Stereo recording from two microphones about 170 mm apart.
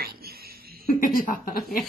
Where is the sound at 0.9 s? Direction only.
55° left (ahead or behind).